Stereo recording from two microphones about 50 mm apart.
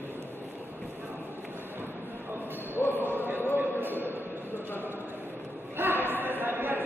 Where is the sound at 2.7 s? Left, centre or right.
Left.